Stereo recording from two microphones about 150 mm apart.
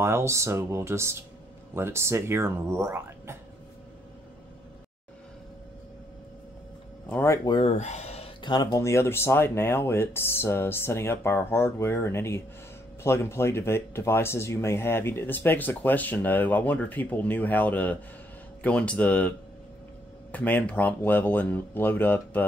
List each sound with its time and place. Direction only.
0.0 s speech: 15° right (ahead or behind)
7.1 s speech: 15° left (ahead or behind)
7.4 s speech: 35° left (ahead or behind)
7.7 s speech: 50° left (ahead or behind)
8.4 s speech: 30° left (ahead or behind); by 22.5 s 10° left (ahead or behind)